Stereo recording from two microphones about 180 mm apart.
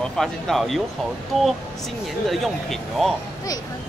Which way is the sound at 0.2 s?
Centre (ahead or behind).